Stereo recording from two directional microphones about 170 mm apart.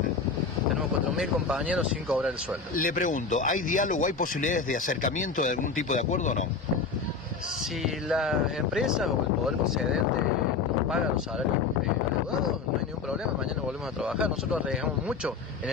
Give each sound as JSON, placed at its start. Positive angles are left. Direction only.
{"t": 1.1, "sound": "speech", "side_deg": -5}
{"t": 2.7, "sound": "speech", "side_deg": 55}
{"t": 7.8, "sound": "speech", "side_deg": 0}
{"t": 14.0, "sound": "speech", "side_deg": -5}